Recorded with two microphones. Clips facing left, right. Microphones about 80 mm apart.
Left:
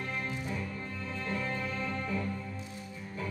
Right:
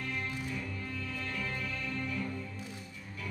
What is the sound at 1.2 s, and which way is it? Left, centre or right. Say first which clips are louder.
Music: left 6 dB; left.